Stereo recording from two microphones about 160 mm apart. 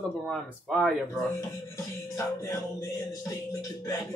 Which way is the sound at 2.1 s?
20° left (ahead or behind).